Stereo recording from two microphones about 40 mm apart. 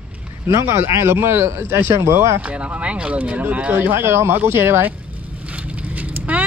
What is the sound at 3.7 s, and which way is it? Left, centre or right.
Speech, right.